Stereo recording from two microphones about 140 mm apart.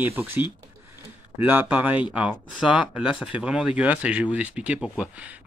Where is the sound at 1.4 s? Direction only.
15° right (ahead or behind).